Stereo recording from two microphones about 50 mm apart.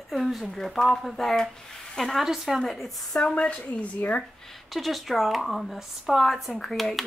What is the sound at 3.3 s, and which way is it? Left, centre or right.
Speech, left.